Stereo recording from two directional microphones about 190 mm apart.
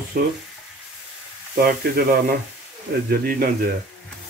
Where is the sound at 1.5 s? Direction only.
55° right (ahead or behind).